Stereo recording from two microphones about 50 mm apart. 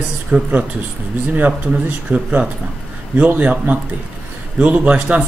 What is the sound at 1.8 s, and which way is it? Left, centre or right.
Speech, right.